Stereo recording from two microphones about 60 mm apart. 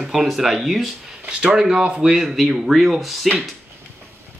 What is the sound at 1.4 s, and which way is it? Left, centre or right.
Speech, centre.